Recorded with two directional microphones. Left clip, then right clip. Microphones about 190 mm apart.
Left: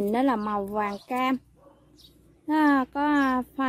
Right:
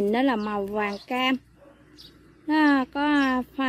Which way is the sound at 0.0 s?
Centre (ahead or behind).